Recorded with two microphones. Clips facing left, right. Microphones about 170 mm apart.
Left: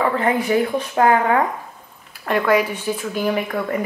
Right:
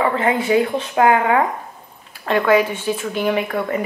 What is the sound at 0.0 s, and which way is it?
Speech, 15° right (ahead or behind).